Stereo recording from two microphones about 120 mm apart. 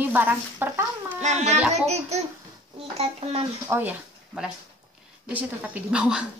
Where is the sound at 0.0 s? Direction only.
15° right (ahead or behind).